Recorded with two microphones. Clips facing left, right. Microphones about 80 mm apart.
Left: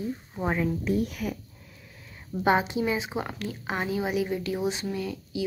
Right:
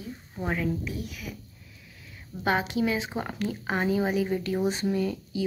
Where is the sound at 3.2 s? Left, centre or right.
Centre.